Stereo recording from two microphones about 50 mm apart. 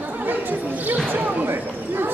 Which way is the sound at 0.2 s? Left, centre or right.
Right.